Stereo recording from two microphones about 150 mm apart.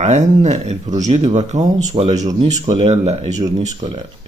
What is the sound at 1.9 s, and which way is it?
Speech, 40° right (ahead or behind).